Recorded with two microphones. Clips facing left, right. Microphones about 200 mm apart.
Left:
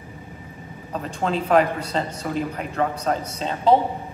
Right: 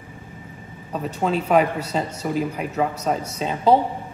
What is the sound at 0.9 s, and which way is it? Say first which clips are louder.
Speech: right 2 dB; 5° right (ahead or behind).